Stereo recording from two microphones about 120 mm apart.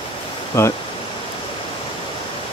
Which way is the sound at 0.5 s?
25° left (ahead or behind).